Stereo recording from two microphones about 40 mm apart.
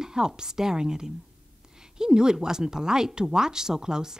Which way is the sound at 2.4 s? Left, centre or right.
Centre.